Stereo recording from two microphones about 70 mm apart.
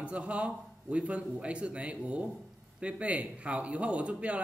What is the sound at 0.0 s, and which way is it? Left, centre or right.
Speech, centre.